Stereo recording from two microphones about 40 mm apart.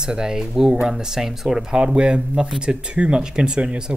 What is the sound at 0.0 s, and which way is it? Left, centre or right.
Speech, centre.